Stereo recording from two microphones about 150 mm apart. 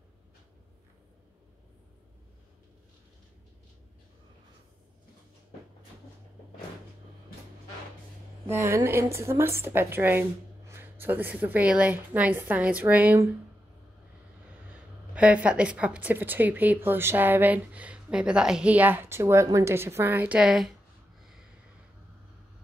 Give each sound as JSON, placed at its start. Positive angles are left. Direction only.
{"t": 8.5, "sound": "a woman's voice", "side_deg": -15}
{"t": 14.7, "sound": "a woman's voice", "side_deg": -10}
{"t": 21.2, "sound": "snort", "side_deg": -5}